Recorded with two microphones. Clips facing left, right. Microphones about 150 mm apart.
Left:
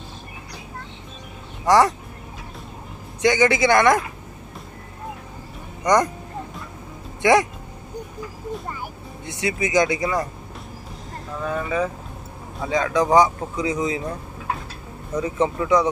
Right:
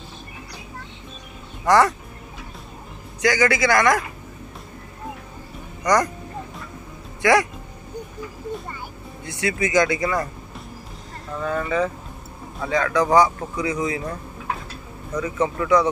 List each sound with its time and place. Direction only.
1.7 s speech: 15° left (ahead or behind)
3.2 s speech: 25° left (ahead or behind)
5.9 s speech: 25° left (ahead or behind)
7.2 s speech: 20° left (ahead or behind)
9.2 s speech: 20° left (ahead or behind)
11.4 s speech: 5° left (ahead or behind)
12.6 s speech: 20° left (ahead or behind)
15.1 s speech: 25° left (ahead or behind)